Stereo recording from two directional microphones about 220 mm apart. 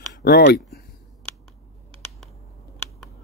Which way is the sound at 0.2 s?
50° left (ahead or behind).